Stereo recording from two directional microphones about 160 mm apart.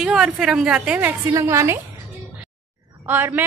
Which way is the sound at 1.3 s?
20° right (ahead or behind).